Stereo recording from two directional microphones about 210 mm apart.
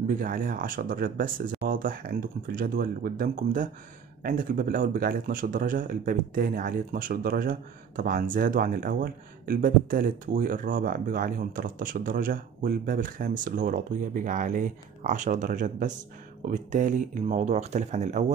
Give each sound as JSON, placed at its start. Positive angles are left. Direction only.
{"t": 0.2, "sound": "a man's voice", "side_deg": -40}